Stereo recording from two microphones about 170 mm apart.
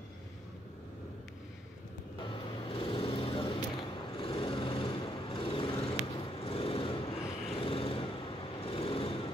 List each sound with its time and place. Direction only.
2.1 s vehicle: 30° left (ahead or behind)